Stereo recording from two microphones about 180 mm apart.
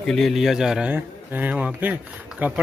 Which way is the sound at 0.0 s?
Centre (ahead or behind).